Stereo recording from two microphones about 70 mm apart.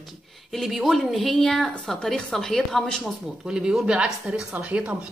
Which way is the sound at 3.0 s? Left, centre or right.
Centre.